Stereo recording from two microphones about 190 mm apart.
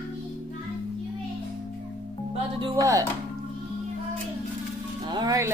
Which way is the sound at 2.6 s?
15° right (ahead or behind).